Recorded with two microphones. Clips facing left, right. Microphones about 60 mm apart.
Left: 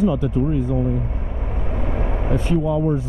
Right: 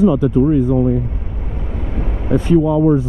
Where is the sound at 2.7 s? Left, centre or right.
Right.